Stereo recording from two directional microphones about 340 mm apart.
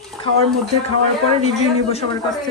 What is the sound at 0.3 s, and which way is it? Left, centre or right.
Speech, right.